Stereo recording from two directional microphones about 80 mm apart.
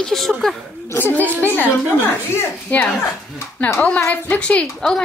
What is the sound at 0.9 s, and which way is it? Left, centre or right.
Speech, left.